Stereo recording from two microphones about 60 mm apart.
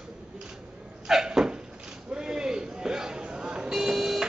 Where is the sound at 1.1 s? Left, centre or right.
Centre.